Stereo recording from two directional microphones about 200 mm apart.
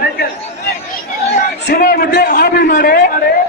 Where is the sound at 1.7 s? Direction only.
50° left (ahead or behind).